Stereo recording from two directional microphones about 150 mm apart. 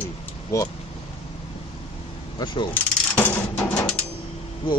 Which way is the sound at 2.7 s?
10° left (ahead or behind).